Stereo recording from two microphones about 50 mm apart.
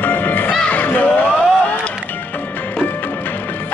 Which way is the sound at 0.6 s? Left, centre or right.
Left.